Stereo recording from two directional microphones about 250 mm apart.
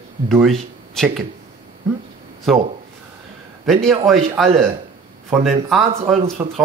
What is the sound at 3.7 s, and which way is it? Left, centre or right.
Speech, centre.